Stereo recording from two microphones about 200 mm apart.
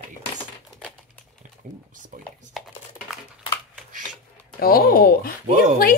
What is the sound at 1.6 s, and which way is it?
Speech, 40° right (ahead or behind).